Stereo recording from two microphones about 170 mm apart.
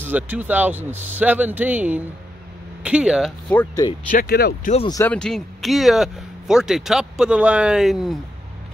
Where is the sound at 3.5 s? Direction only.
20° left (ahead or behind).